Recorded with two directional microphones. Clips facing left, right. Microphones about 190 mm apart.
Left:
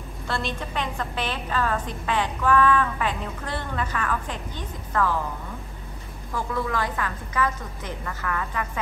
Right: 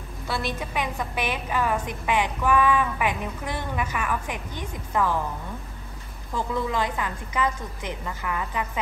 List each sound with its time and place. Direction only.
0.3 s a woman's voice: 10° right (ahead or behind)
6.3 s a woman's voice: 20° right (ahead or behind)